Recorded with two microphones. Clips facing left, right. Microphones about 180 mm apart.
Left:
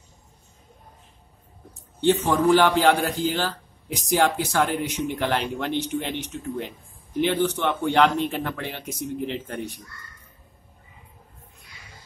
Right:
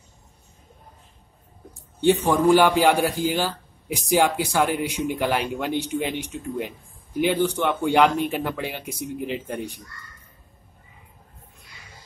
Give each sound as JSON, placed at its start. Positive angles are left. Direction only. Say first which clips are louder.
{"t": 1.7, "sound": "a man's voice", "louder": "right 1 dB", "side_deg": -10}